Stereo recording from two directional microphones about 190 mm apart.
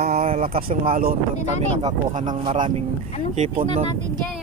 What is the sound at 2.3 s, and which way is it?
Speech, 25° right (ahead or behind).